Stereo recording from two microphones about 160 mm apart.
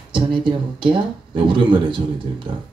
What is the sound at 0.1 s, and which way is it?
Speech, 30° right (ahead or behind).